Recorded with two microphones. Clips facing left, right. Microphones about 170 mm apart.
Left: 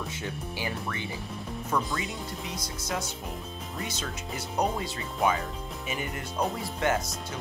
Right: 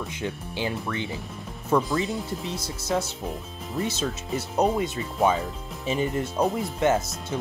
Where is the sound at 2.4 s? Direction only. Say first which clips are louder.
Right 4 dB; 25° right (ahead or behind).